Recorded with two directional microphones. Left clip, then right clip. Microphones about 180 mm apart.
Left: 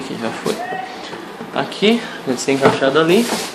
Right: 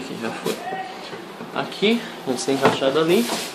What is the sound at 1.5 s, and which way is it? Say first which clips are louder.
Speech: left 5 dB; 5° left (ahead or behind).